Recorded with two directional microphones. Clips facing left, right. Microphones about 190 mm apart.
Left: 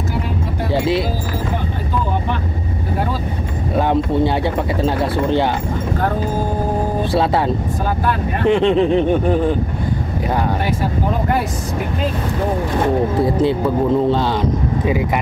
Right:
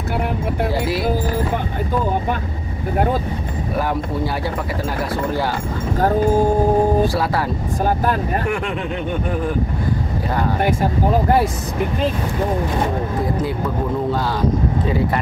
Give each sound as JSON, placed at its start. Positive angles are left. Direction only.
{"t": 3.7, "sound": "speech", "side_deg": 25}
{"t": 7.2, "sound": "speech", "side_deg": 25}